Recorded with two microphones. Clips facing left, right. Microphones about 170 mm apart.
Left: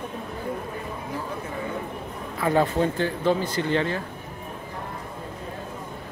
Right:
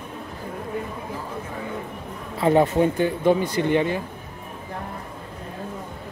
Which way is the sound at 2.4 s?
20° right (ahead or behind).